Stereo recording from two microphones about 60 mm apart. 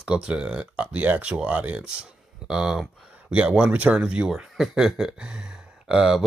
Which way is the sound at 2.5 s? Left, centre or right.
Centre.